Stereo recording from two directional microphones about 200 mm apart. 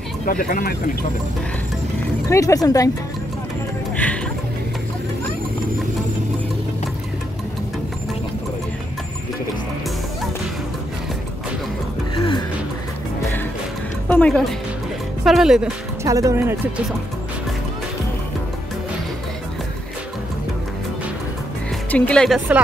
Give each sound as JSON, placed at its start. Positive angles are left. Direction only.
{"t": 0.3, "sound": "speech", "side_deg": 45}
{"t": 2.2, "sound": "speech", "side_deg": 15}
{"t": 3.9, "sound": "music", "side_deg": 5}
{"t": 14.0, "sound": "speech", "side_deg": 5}
{"t": 16.0, "sound": "speech", "side_deg": -15}
{"t": 21.9, "sound": "speech", "side_deg": 5}